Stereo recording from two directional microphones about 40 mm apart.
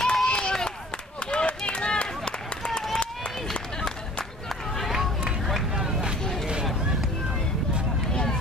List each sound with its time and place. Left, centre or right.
0.0 s run: centre
4.5 s run: centre
5.2 s vehicle: centre
8.1 s a sound: centre